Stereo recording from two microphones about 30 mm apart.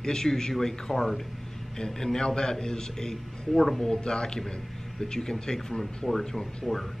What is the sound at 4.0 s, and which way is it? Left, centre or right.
A man's voice, left.